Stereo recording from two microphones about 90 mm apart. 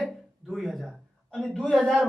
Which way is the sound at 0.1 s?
Centre (ahead or behind).